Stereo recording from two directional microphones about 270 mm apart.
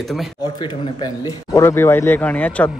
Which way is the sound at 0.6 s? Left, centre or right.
Centre.